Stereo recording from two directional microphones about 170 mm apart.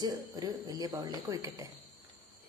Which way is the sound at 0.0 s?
25° right (ahead or behind).